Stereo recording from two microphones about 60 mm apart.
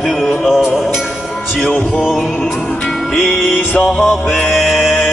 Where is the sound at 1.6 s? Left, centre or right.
Left.